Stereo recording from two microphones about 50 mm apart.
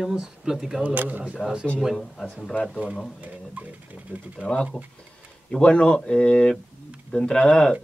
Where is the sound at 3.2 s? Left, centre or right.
Right.